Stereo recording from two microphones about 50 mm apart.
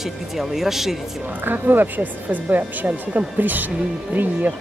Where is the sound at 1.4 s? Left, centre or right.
Right.